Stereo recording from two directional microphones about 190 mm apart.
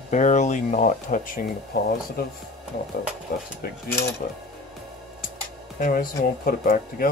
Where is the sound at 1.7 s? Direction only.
60° left (ahead or behind).